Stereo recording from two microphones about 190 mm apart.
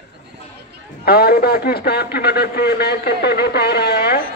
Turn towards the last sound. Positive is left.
turn(degrees=55)  # may be behind; listen again after turning